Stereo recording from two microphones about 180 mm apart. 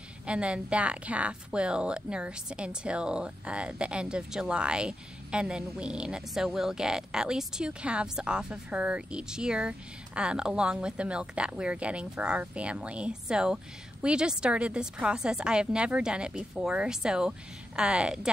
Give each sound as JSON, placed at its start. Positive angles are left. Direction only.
{"t": 0.3, "sound": "a woman's voice", "side_deg": -5}